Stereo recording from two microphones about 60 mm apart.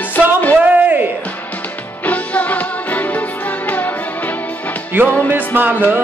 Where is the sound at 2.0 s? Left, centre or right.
Left.